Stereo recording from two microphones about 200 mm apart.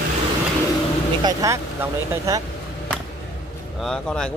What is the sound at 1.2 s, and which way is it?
Speech, 20° right (ahead or behind).